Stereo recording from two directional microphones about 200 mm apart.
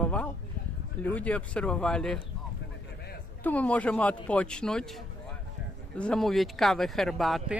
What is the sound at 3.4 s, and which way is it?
A man's voice, 5° left (ahead or behind).